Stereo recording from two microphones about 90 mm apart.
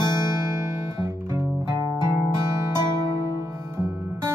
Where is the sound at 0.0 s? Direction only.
50° left (ahead or behind).